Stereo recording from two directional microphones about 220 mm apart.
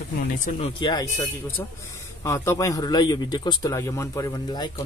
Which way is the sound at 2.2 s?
15° left (ahead or behind).